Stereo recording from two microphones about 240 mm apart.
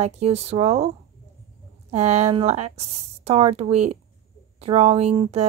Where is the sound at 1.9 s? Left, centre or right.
Right.